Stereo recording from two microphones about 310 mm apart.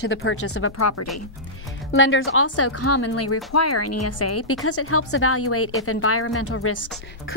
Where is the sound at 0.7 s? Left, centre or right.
Left.